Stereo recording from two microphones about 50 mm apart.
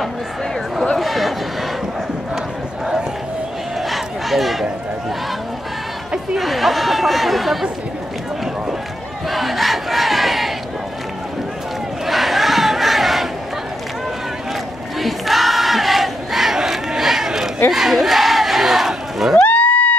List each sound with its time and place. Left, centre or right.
0.9 s a sound: centre
3.9 s crowd: centre
6.3 s speech: centre
9.3 s crowd: centre
12.1 s battle cry: centre
15.0 s crowd: centre
17.6 s battle cry: centre
19.4 s a sound: left